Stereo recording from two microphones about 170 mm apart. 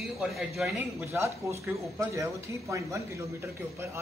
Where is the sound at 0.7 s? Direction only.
15° right (ahead or behind).